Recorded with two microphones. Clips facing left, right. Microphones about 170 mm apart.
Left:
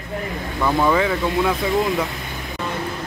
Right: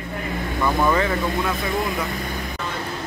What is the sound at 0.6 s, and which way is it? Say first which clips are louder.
Speech: left 2 dB; 10° left (ahead or behind).